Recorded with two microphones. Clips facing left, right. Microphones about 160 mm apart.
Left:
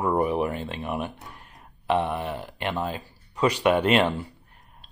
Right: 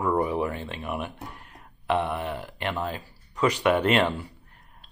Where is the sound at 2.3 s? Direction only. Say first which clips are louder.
Left 1 dB; 20° left (ahead or behind).